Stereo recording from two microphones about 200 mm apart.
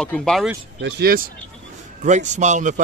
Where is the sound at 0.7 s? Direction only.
55° right (ahead or behind).